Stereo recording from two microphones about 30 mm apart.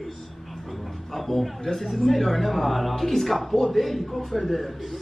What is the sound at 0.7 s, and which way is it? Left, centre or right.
Speech, centre.